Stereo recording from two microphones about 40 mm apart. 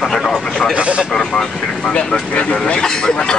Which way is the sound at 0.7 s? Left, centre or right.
Right.